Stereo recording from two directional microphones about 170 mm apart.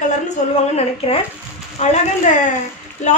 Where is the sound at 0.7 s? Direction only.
35° left (ahead or behind).